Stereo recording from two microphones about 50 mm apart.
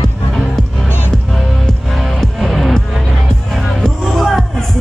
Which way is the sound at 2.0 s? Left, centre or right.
Centre.